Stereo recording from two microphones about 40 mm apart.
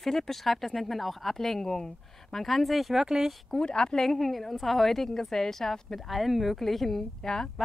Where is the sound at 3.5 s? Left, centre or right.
Centre.